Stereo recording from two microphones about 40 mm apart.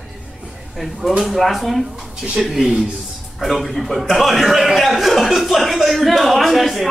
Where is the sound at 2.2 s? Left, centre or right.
Right.